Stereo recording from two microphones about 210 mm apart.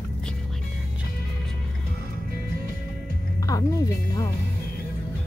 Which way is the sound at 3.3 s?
15° left (ahead or behind).